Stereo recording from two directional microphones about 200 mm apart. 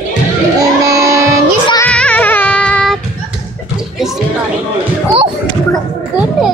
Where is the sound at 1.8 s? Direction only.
5° left (ahead or behind).